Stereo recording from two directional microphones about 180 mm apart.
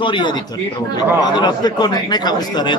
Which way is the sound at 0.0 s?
25° left (ahead or behind).